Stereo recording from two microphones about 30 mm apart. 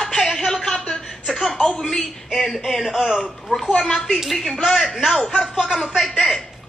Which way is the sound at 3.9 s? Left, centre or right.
Centre.